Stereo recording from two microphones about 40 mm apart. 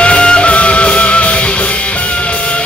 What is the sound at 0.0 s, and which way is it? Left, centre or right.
Music, left.